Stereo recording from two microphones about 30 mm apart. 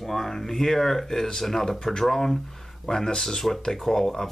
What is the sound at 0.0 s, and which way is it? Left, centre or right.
Speech, centre.